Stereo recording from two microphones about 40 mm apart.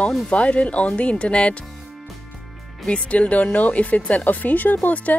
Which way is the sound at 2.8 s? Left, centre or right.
Left.